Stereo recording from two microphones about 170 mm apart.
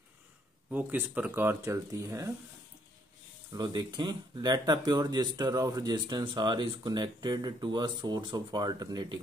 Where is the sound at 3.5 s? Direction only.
25° right (ahead or behind).